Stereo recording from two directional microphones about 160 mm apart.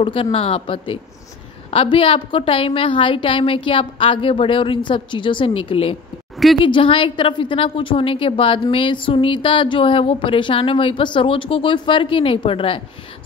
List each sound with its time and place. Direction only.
0.0 s a woman's voice: 35° left (ahead or behind)
6.3 s a woman's voice: centre (ahead or behind)
6.6 s a woman's voice: 30° left (ahead or behind)